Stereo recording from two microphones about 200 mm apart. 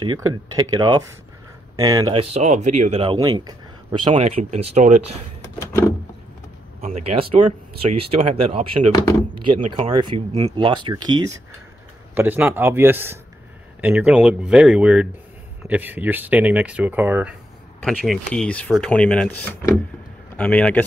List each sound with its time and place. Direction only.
0.0 s speech: 20° right (ahead or behind)
4.1 s speech: 35° right (ahead or behind)
5.6 s a sound: 15° left (ahead or behind)
6.8 s speech: 30° right (ahead or behind); by 20.8 s 5° left (ahead or behind)